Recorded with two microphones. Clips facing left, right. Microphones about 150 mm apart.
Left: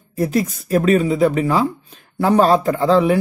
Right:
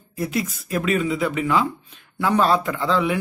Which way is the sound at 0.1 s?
40° left (ahead or behind).